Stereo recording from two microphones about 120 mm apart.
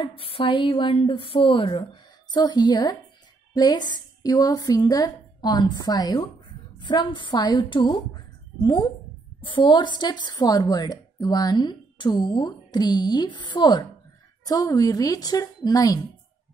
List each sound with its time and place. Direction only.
0.0 s a woman's voice: 50° left (ahead or behind); by 16.0 s 30° left (ahead or behind)